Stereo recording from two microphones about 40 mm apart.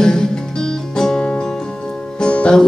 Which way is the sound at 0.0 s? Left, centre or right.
Centre.